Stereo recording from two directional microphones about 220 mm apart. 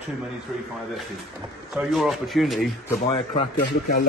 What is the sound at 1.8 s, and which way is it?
Speech, centre (ahead or behind).